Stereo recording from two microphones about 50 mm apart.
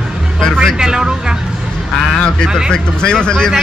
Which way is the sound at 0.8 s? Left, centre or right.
Centre.